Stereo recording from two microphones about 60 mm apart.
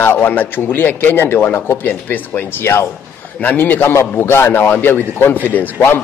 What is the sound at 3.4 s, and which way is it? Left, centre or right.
A man's voice, left.